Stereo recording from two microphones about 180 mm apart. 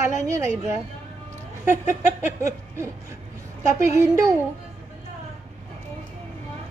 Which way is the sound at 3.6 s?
15° right (ahead or behind).